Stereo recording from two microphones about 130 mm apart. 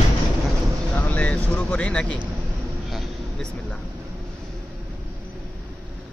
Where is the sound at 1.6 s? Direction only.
10° left (ahead or behind).